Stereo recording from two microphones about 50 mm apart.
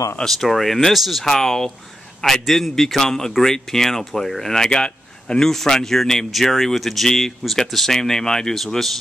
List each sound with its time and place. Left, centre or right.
0.2 s speech: centre
1.3 s speech: centre
4.6 s speech: centre